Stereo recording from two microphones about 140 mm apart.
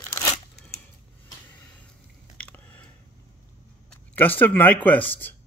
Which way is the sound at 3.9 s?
15° left (ahead or behind).